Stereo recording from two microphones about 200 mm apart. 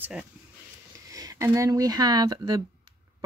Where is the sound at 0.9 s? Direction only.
15° right (ahead or behind).